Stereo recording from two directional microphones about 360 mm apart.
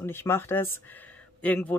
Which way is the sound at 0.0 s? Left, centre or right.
Centre.